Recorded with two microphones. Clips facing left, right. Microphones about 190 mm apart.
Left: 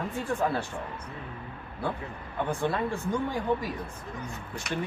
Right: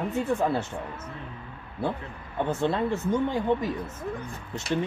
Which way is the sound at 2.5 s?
25° right (ahead or behind).